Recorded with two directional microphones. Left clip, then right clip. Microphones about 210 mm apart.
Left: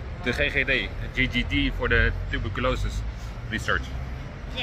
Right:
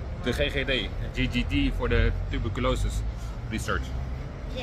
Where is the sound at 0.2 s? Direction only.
Centre (ahead or behind).